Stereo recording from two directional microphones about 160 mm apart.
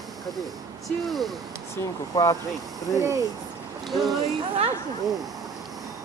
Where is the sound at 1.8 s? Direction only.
20° left (ahead or behind).